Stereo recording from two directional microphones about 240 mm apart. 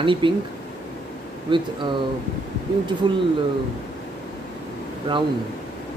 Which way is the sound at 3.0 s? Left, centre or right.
Centre.